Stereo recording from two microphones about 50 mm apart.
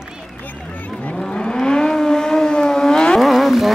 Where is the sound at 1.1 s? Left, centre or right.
Centre.